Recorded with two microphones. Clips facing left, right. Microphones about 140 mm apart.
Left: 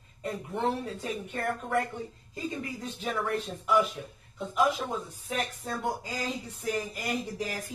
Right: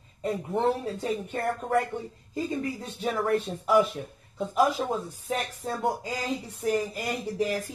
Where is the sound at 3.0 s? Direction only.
35° right (ahead or behind).